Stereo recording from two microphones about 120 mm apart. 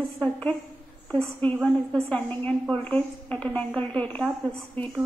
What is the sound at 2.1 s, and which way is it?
A woman's voice, 10° left (ahead or behind).